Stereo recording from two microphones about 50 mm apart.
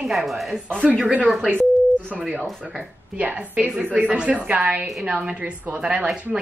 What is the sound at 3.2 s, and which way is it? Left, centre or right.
Speech, right.